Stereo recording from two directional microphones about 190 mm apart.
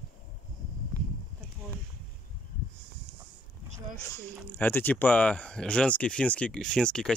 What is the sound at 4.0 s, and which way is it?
Speech, 10° left (ahead or behind).